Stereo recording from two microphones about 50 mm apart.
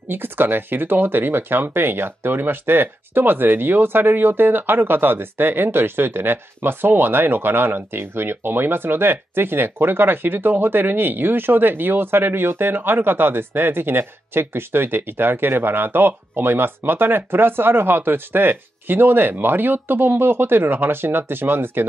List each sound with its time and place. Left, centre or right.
0.1 s speech: right